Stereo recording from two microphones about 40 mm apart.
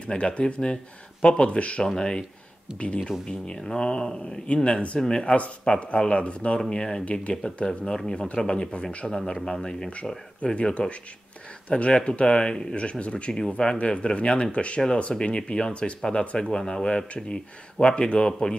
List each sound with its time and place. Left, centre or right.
0.0 s speech: left
10.4 s speech: left